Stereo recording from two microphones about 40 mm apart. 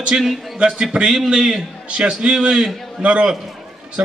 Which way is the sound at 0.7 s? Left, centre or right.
Centre.